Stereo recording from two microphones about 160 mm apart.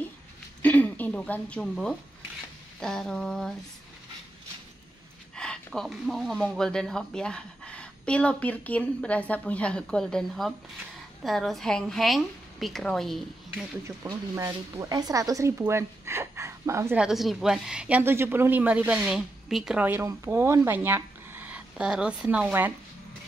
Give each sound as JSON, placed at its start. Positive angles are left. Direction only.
{"t": 0.6, "sound": "speech", "side_deg": 10}
{"t": 5.3, "sound": "speech", "side_deg": 5}
{"t": 13.8, "sound": "a woman's voice", "side_deg": -20}
{"t": 16.9, "sound": "a woman's voice", "side_deg": -5}